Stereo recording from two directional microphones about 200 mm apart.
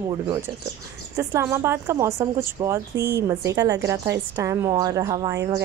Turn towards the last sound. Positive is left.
turn(degrees=-15)  # may be behind; listen again after turning